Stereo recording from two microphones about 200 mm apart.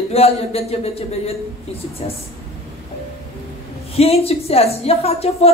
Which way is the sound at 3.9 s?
30° left (ahead or behind).